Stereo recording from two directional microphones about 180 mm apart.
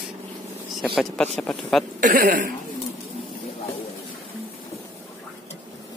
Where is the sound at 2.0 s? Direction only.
50° right (ahead or behind).